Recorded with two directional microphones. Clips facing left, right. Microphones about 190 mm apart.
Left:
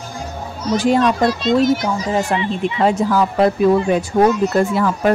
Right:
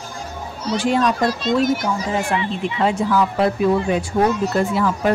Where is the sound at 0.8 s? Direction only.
45° left (ahead or behind).